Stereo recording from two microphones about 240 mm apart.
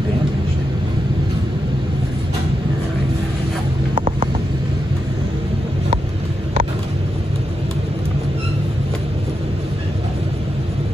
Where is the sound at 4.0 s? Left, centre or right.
Right.